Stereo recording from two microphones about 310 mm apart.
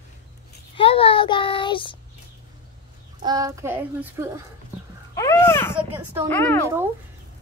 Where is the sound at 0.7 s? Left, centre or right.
Centre.